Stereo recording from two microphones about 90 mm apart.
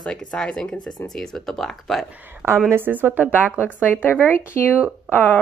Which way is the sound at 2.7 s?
20° right (ahead or behind).